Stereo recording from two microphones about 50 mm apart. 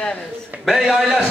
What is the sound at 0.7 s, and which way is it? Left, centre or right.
Speech, centre.